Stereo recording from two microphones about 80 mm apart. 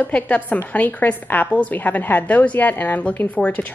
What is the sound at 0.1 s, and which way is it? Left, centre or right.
A woman's voice, centre.